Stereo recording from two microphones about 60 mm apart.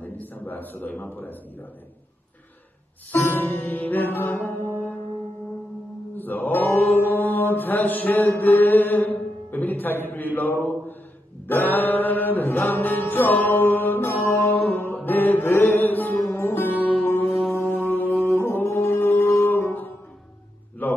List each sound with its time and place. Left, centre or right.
0.0 s a man's voice: left
3.1 s music: left
6.1 s mantra: left
11.4 s music: left
17.1 s music: left
20.8 s a sound: left